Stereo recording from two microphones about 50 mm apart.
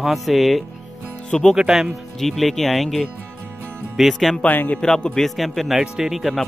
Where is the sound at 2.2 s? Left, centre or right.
Centre.